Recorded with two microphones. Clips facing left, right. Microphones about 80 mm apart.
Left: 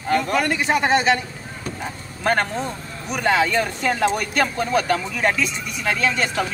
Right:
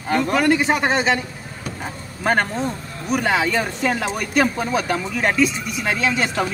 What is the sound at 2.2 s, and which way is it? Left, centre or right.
Speech, centre.